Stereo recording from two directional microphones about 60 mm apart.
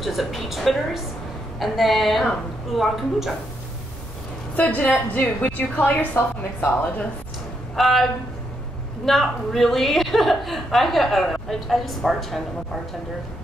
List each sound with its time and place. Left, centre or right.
0.0 s a woman's voice: centre
4.6 s a woman's voice: left
7.7 s a woman's voice: centre